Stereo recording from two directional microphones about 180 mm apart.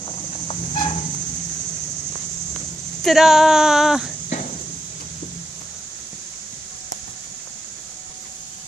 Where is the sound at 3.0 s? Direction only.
Centre (ahead or behind).